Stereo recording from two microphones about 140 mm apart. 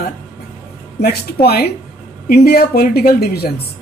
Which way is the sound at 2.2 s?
90° left.